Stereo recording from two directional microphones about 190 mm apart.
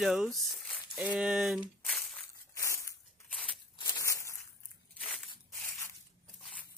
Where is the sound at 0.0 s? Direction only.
Centre (ahead or behind).